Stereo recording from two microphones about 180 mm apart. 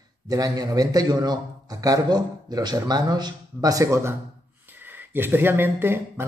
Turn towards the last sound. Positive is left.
turn(degrees=-10)  # may be behind; listen again after turning